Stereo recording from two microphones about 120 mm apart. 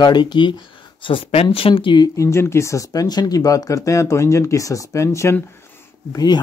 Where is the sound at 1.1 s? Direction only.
55° left (ahead or behind).